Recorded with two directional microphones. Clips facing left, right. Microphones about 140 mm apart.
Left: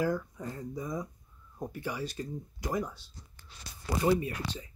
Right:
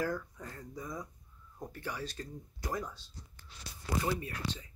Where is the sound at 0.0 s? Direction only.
15° left (ahead or behind).